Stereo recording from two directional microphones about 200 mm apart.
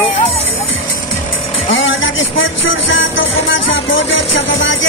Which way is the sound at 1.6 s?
70° left (ahead or behind).